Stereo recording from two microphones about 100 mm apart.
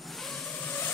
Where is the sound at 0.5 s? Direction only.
20° left (ahead or behind).